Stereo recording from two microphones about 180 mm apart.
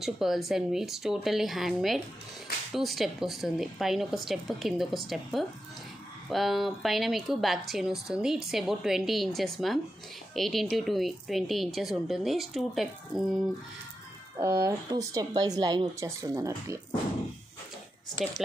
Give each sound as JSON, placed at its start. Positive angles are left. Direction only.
{"t": 0.0, "sound": "speech", "side_deg": 0}
{"t": 14.4, "sound": "speech", "side_deg": -15}